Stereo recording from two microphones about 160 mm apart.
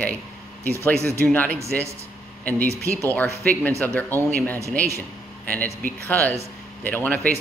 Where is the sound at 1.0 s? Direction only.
15° right (ahead or behind).